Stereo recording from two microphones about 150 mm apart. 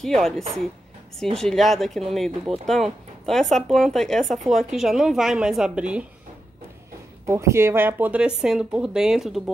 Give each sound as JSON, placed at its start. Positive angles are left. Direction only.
{"t": 0.0, "sound": "speech", "side_deg": 0}
{"t": 7.2, "sound": "speech", "side_deg": -20}